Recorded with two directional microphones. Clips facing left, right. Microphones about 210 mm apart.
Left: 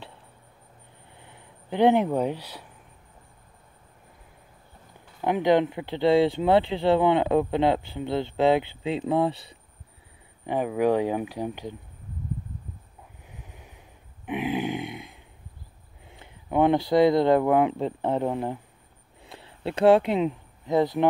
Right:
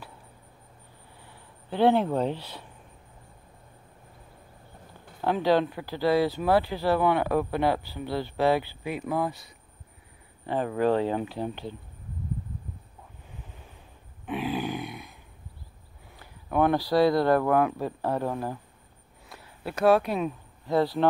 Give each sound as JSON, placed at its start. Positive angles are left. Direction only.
{"t": 1.2, "sound": "speech", "side_deg": 20}
{"t": 5.2, "sound": "speech", "side_deg": 20}
{"t": 10.4, "sound": "speech", "side_deg": 15}
{"t": 13.3, "sound": "vehicle", "side_deg": 10}
{"t": 14.2, "sound": "grunt", "side_deg": 20}
{"t": 16.1, "sound": "speech", "side_deg": 20}